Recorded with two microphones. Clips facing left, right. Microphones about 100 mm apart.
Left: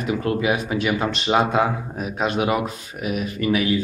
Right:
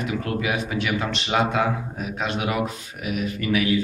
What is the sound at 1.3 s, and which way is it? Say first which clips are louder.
Speech: left 3 dB; 25° left (ahead or behind).